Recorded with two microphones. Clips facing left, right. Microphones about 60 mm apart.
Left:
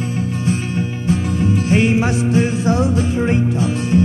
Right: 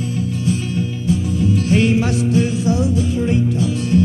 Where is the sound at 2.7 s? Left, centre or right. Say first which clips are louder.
Left 1 dB; left.